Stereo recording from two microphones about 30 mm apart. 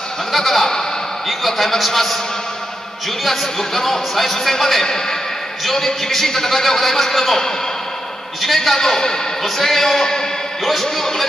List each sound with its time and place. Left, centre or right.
0.3 s a sound: centre
1.4 s a man's voice: centre
3.3 s a man's voice: centre
8.5 s a man's voice: centre
10.6 s a man's voice: centre